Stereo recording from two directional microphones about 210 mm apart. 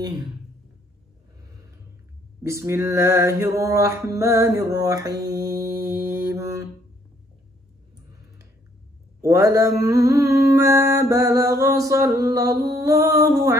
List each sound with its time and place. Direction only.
2.4 s mantra: 10° right (ahead or behind)
9.2 s mantra: 15° right (ahead or behind)